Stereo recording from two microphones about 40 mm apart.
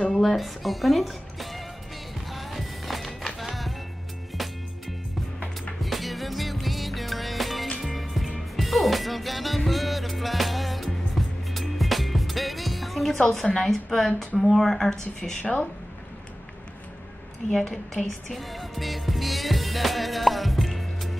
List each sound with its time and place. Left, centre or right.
0.1 s speech: centre
2.3 s music: centre
5.8 s music: centre
13.2 s speech: centre
15.4 s speech: left
17.5 s speech: centre
18.3 s music: centre